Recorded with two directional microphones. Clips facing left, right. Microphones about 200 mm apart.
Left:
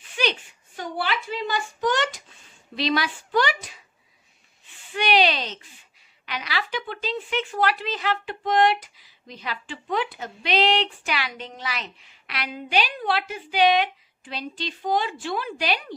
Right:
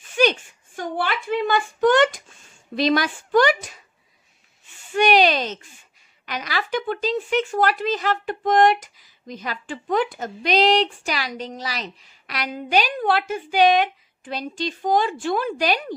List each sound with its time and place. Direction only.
0.1 s a child's voice: 45° right (ahead or behind)
4.9 s a woman's voice: 45° right (ahead or behind)